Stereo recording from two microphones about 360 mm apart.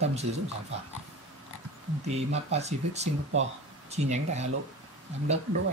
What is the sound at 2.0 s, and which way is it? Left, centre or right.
Speech, centre.